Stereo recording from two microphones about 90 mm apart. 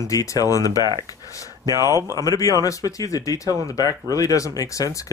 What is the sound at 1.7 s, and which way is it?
Speech, 40° right (ahead or behind).